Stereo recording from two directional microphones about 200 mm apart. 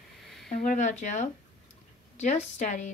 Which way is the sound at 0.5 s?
40° left (ahead or behind).